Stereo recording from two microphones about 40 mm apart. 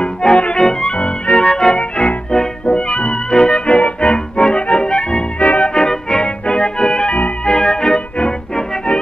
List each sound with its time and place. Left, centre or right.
0.0 s music: left
2.9 s music: left
3.3 s music: left
6.2 s organ: left